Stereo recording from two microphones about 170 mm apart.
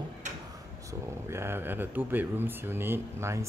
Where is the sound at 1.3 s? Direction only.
15° right (ahead or behind).